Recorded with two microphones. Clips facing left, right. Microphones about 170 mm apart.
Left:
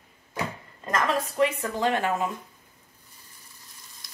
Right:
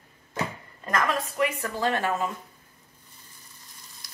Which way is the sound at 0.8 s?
25° left (ahead or behind).